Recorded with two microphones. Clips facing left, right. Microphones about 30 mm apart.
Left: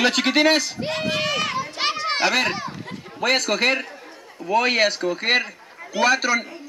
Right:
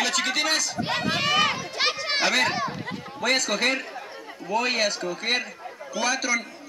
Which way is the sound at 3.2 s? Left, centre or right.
Centre.